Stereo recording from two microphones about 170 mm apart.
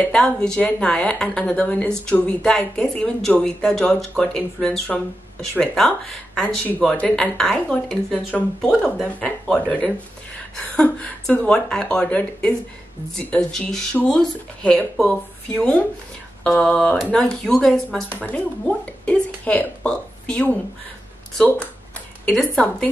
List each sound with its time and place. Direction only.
0.0 s a woman's voice: 5° left (ahead or behind)
22.2 s a woman's voice: 5° left (ahead or behind)